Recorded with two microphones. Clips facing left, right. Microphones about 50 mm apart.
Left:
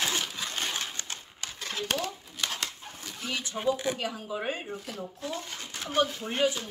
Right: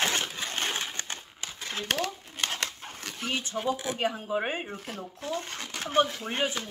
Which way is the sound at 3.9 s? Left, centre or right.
Right.